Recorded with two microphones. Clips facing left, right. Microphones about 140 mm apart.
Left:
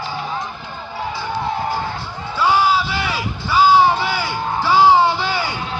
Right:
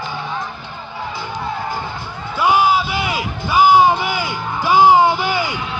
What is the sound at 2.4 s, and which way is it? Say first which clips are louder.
Music: right 1 dB; 20° right (ahead or behind).